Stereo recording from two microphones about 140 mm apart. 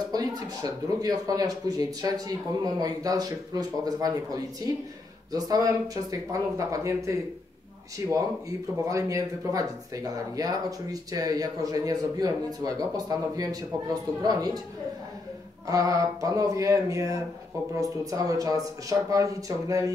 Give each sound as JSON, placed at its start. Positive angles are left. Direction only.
{"t": 0.1, "sound": "speech", "side_deg": -25}
{"t": 15.6, "sound": "speech", "side_deg": -25}